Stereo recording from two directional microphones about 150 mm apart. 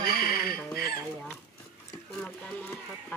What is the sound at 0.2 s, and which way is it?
Chicken, 80° left.